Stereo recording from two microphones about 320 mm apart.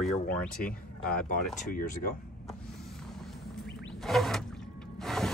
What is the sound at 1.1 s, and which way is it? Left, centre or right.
Speech, left.